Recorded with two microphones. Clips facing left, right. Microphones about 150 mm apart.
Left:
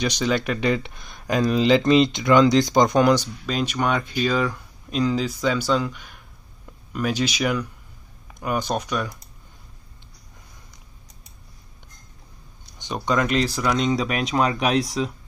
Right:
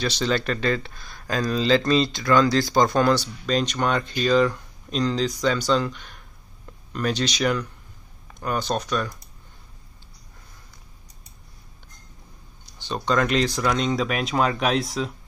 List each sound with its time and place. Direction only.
0.0 s speech: 10° left (ahead or behind)
12.7 s speech: 15° left (ahead or behind)